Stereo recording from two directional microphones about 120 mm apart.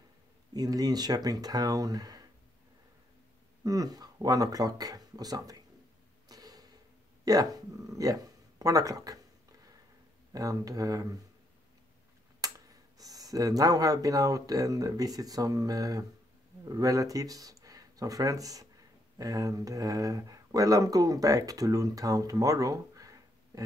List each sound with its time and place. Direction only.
0.5 s speech: 30° right (ahead or behind)
3.6 s speech: 30° right (ahead or behind)
6.2 s tick-tock: 30° right (ahead or behind)
7.5 s speech: 30° right (ahead or behind)
10.3 s speech: 30° right (ahead or behind)
12.4 s speech: 30° right (ahead or behind)